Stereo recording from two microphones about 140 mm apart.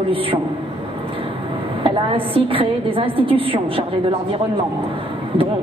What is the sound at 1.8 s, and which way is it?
A woman's voice, 40° right (ahead or behind).